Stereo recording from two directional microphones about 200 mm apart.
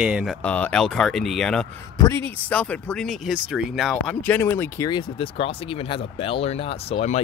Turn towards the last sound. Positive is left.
turn(degrees=30)  # may be behind; listen again after turning